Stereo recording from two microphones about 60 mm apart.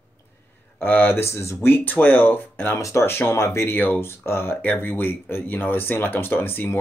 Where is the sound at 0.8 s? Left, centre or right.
Left.